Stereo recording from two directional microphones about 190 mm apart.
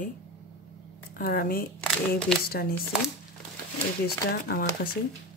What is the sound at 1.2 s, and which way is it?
Speech, 50° left (ahead or behind).